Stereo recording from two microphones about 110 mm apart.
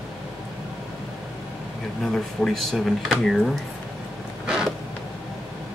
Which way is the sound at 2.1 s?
5° left (ahead or behind).